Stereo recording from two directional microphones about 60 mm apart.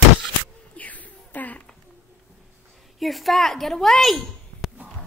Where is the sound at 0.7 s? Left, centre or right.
Left.